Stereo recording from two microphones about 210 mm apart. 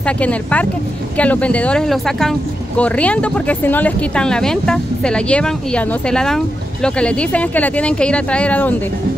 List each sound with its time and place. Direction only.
0.0 s speech: 5° left (ahead or behind)